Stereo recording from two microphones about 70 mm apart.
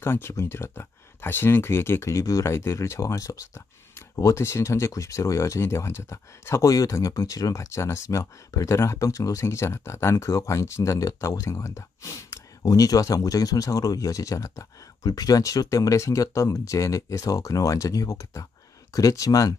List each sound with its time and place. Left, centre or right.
0.0 s speech: left
6.7 s speech: left